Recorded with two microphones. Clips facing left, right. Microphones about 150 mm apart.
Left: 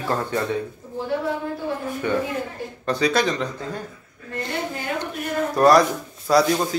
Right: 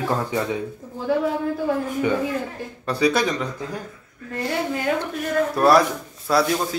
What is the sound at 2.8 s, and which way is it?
Speech, 5° right (ahead or behind).